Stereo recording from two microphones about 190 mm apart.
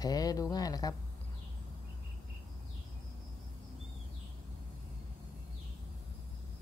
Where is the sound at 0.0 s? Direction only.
20° left (ahead or behind).